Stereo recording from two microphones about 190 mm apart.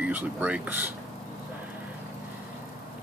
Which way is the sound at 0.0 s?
10° right (ahead or behind).